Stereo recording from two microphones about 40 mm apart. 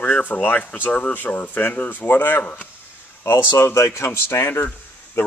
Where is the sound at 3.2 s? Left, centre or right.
Left.